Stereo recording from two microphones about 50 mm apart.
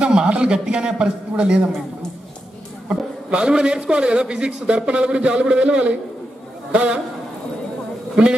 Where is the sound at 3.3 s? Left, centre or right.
Centre.